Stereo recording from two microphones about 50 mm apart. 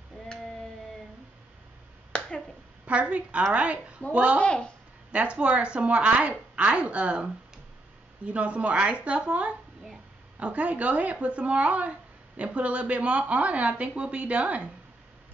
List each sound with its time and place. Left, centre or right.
2.9 s a woman's voice: right
4.4 s a child's voice: left
5.1 s speech: right